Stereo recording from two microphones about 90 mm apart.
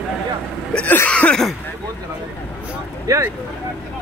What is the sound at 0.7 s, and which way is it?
Throat clearing, 15° left (ahead or behind).